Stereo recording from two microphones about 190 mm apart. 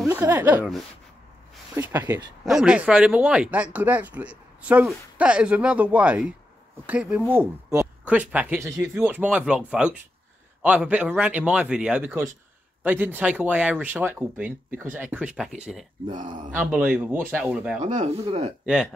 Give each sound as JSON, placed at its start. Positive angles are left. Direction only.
{"t": 0.0, "sound": "speech", "side_deg": -10}
{"t": 1.8, "sound": "speech", "side_deg": -10}
{"t": 2.4, "sound": "speech", "side_deg": -5}
{"t": 17.7, "sound": "speech", "side_deg": -40}
{"t": 18.7, "sound": "speech", "side_deg": 0}